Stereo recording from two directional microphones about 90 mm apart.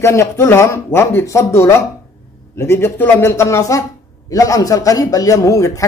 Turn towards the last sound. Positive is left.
turn(degrees=35)  # may be behind; listen again after turning